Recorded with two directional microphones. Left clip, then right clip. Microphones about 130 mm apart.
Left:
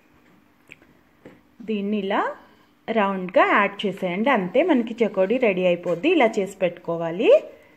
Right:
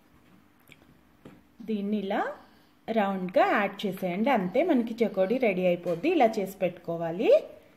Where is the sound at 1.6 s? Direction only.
25° left (ahead or behind).